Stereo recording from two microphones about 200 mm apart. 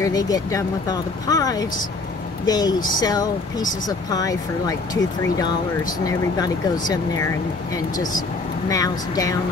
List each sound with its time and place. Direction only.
0.0 s speech: 20° left (ahead or behind)
6.0 s speech: 20° left (ahead or behind)